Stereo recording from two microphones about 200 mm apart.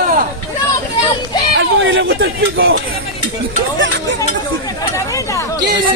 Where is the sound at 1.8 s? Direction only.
75° right (ahead or behind).